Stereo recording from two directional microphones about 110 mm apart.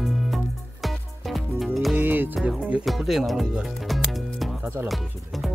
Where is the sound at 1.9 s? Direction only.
20° right (ahead or behind).